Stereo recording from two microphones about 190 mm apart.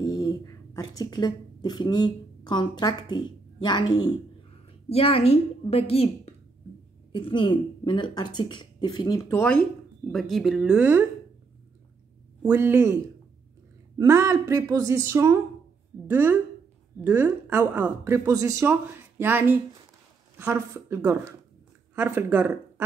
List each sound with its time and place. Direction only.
0.0 s a woman's voice: 20° left (ahead or behind); by 11.1 s 10° right (ahead or behind)
12.4 s speech: 10° right (ahead or behind)